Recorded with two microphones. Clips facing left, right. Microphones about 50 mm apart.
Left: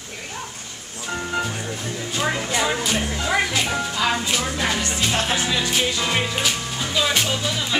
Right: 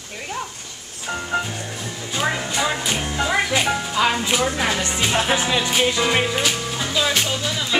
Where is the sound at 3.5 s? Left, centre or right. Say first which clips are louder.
Right 3 dB; right.